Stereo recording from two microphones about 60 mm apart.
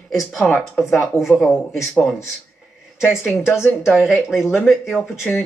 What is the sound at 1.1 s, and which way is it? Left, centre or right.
Speech, left.